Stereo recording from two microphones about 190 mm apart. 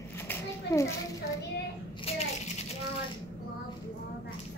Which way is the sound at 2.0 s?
30° left (ahead or behind).